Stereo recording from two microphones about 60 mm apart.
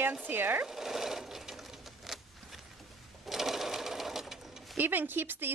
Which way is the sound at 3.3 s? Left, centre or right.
Centre.